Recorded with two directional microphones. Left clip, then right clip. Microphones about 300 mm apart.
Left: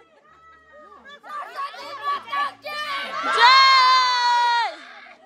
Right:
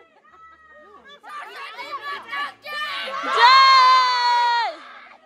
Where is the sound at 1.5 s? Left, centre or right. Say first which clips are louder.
Left 1 dB; centre.